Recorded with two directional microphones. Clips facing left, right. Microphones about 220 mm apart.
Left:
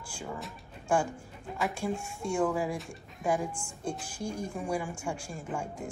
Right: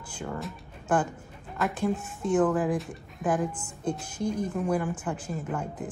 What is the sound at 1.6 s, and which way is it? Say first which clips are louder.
Speech: right 4 dB; 5° right (ahead or behind).